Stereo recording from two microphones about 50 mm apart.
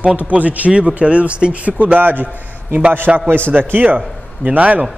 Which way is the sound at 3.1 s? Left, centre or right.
Right.